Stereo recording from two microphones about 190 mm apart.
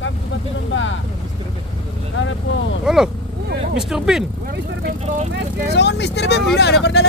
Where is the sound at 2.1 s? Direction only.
80° left.